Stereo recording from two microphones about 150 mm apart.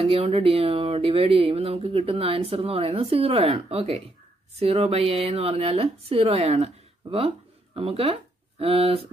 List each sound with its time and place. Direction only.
0.0 s speech: 40° right (ahead or behind)